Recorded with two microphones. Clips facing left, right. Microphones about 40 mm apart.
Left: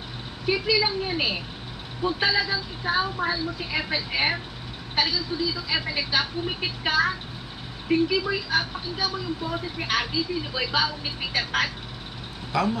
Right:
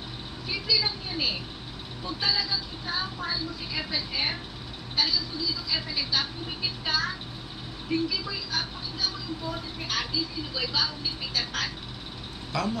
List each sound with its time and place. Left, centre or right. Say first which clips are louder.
0.5 s a woman's voice: left 5 dB; left
12.5 s speech: left 5 dB; centre